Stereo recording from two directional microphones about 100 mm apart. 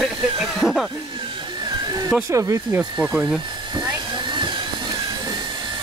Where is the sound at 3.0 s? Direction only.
5° right (ahead or behind).